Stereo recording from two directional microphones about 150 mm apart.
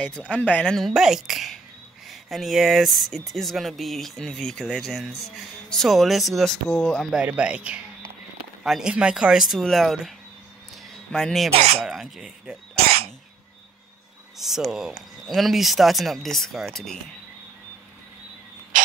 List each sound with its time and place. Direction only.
0.0 s speech: 5° left (ahead or behind)
11.5 s speech: 45° right (ahead or behind)
11.8 s speech: centre (ahead or behind)
12.8 s cough: 40° right (ahead or behind)
14.4 s speech: centre (ahead or behind)